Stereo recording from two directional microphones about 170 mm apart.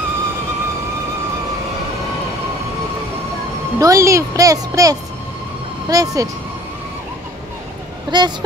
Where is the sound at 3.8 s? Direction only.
20° right (ahead or behind).